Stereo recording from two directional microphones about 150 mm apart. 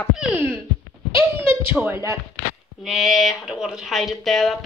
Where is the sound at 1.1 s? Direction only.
40° left (ahead or behind).